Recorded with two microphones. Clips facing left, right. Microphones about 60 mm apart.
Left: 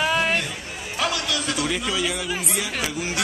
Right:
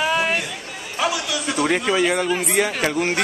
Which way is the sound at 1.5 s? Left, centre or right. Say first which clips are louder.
Right 11 dB; right.